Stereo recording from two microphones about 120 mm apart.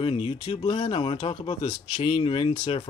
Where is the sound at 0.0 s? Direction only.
50° left (ahead or behind).